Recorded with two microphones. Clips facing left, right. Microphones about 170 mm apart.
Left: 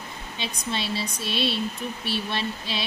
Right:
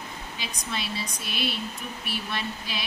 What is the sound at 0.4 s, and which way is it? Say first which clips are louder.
Speech: left 5 dB; 30° left (ahead or behind).